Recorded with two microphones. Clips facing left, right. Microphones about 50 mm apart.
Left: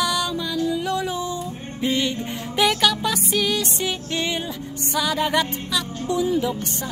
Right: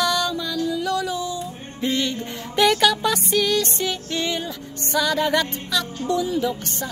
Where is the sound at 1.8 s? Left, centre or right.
Centre.